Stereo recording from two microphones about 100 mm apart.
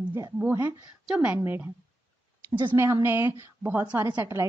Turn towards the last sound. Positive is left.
turn(degrees=-25)  # may be behind; listen again after turning